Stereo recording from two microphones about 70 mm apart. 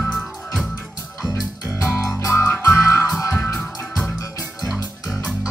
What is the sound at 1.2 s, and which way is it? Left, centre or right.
Music, left.